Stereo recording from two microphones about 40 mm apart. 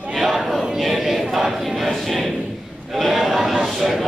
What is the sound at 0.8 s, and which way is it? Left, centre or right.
Choir, centre.